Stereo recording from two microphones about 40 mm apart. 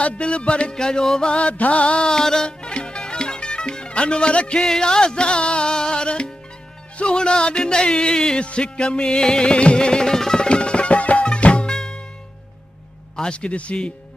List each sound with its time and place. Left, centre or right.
0.0 s music: left
1.5 s music: left
2.0 s music: centre
4.6 s music: centre
11.6 s music: centre
13.1 s music: left